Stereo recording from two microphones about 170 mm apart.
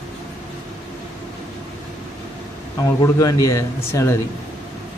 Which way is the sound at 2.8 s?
20° left (ahead or behind).